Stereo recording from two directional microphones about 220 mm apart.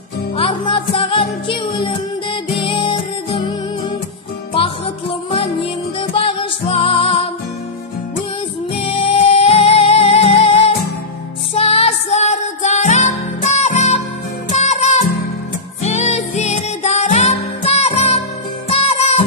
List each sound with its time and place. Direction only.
0.4 s music: 25° left (ahead or behind)
5.3 s music: 25° left (ahead or behind)
8.7 s music: 25° left (ahead or behind)